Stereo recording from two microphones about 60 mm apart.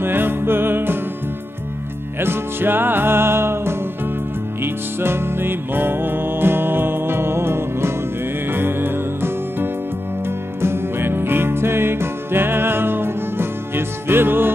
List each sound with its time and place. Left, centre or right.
0.0 s music: right
2.1 s music: right